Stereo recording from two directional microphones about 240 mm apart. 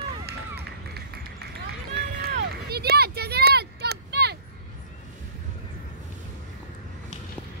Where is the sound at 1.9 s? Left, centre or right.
Right.